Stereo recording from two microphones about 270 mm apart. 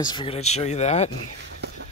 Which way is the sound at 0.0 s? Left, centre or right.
Centre.